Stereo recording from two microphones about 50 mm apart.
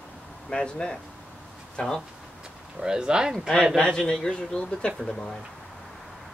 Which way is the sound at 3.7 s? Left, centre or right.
Centre.